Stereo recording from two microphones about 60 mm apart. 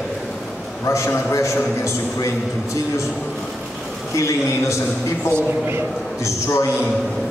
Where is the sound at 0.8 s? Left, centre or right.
Left.